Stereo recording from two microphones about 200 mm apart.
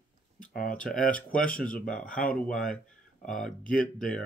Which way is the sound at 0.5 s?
45° left (ahead or behind).